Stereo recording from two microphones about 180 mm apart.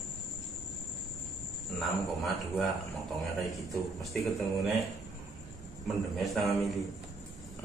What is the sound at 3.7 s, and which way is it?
A man's voice, centre (ahead or behind).